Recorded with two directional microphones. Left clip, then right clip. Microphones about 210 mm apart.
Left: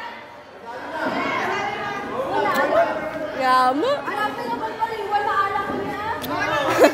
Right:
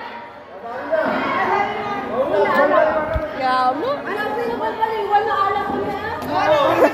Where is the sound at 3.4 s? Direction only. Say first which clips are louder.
Left 1 dB; 35° left (ahead or behind).